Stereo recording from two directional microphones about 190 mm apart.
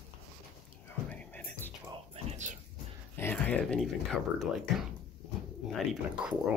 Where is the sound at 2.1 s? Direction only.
35° right (ahead or behind).